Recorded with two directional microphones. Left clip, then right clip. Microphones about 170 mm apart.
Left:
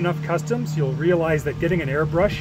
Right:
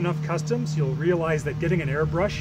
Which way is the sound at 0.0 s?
30° left (ahead or behind).